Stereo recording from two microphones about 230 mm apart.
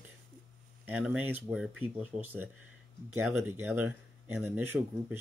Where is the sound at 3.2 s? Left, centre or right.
Centre.